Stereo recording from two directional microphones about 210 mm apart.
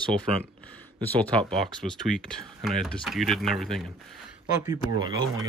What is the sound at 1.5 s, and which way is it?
Speech, centre (ahead or behind).